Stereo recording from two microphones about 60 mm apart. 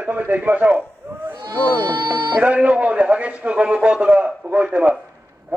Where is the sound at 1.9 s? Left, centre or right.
Right.